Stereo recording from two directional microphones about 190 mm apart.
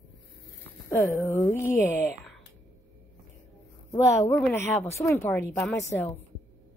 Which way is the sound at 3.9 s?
15° left (ahead or behind).